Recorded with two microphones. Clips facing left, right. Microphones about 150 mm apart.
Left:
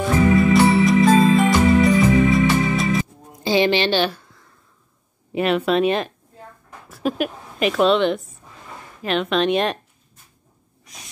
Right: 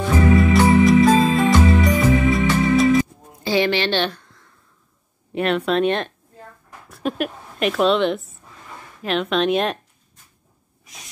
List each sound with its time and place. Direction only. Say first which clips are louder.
0.0 s music: even; centre (ahead or behind)
3.4 s a sound: left 2 dB; 20° left (ahead or behind)
3.9 s a woman's voice: left 2 dB; 5° left (ahead or behind)